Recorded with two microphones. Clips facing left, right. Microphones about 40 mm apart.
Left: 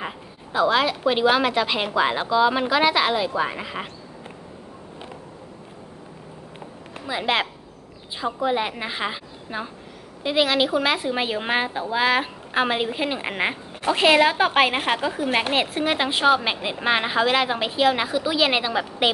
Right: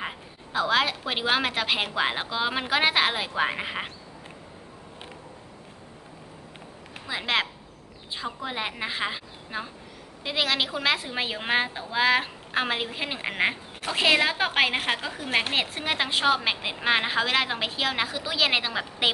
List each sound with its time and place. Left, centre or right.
0.0 s a woman's voice: centre
3.3 s speech: right
6.9 s a woman's voice: centre